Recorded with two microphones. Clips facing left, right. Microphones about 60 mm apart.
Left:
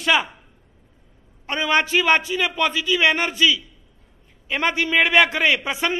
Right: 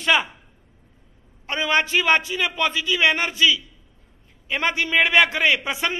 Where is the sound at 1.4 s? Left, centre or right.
Centre.